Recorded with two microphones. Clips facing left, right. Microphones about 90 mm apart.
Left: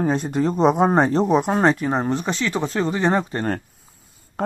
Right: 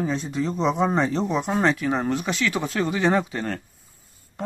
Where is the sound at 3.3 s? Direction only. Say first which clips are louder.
Left 5 dB; 50° left (ahead or behind).